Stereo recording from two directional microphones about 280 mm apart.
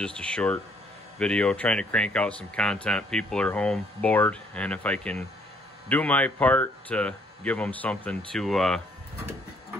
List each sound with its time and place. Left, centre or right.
0.0 s speech: centre